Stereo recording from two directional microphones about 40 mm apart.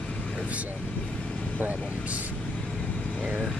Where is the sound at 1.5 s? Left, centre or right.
Right.